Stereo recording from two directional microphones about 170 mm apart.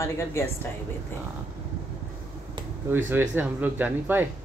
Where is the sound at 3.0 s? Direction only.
10° right (ahead or behind).